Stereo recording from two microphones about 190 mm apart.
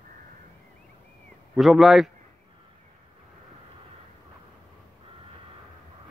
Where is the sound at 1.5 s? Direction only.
Centre (ahead or behind).